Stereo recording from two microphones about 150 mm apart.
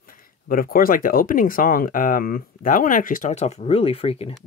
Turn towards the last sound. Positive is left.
turn(degrees=40)  # may be behind; listen again after turning